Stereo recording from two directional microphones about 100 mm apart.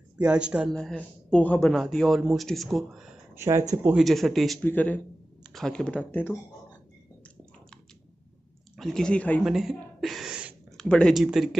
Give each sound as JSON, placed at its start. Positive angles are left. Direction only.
{"t": 0.2, "sound": "speech", "side_deg": -10}
{"t": 0.7, "sound": "speech", "side_deg": 5}
{"t": 1.7, "sound": "speech", "side_deg": 0}
{"t": 3.3, "sound": "speech", "side_deg": -30}
{"t": 3.9, "sound": "speech", "side_deg": 0}
{"t": 4.6, "sound": "speech", "side_deg": 15}
{"t": 5.4, "sound": "a sound", "side_deg": 5}
{"t": 8.7, "sound": "speech", "side_deg": 5}
{"t": 9.4, "sound": "a sound", "side_deg": -5}
{"t": 10.8, "sound": "speech", "side_deg": 10}
{"t": 11.1, "sound": "speech", "side_deg": -5}